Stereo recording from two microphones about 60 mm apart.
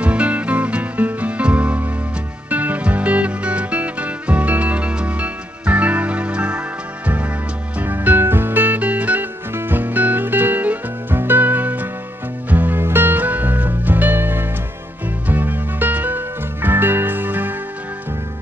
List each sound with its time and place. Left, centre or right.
0.0 s music: right
7.8 s music: right